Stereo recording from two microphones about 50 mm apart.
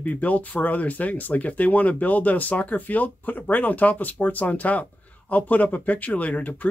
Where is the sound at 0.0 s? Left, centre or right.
Left.